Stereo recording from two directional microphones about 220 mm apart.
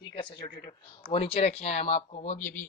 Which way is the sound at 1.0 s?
25° left (ahead or behind).